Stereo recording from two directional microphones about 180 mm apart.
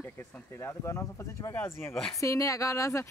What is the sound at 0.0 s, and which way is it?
Speech, 15° left (ahead or behind).